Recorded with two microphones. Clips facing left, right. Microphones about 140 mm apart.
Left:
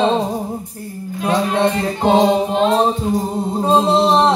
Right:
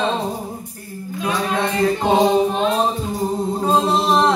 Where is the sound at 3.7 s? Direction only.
25° left (ahead or behind).